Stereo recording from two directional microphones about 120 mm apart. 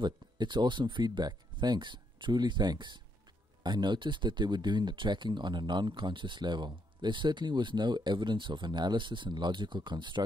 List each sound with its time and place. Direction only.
0.0 s speech: 40° right (ahead or behind)